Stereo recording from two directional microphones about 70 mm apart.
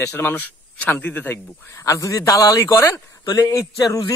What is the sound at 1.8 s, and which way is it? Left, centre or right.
Speech, left.